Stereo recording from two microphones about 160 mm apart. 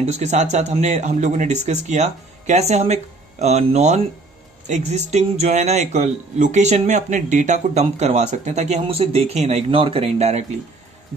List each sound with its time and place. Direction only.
0.0 s speech: 50° right (ahead or behind)